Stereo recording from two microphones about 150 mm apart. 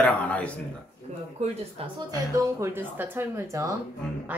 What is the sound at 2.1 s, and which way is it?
Speech, 15° right (ahead or behind).